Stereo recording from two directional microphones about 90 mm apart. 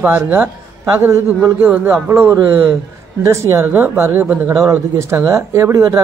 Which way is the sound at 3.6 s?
20° right (ahead or behind).